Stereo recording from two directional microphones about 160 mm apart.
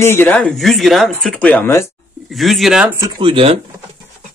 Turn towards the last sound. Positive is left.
turn(degrees=-35)  # may be behind; listen again after turning